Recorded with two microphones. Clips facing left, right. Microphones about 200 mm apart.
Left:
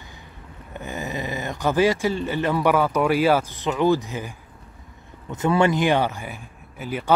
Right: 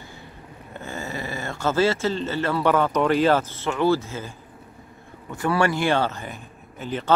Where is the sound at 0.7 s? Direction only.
15° left (ahead or behind).